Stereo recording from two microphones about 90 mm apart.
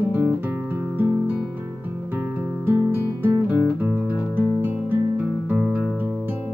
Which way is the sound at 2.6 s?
25° right (ahead or behind).